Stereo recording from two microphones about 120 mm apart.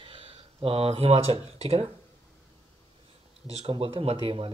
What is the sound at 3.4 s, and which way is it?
Speech, 55° right (ahead or behind).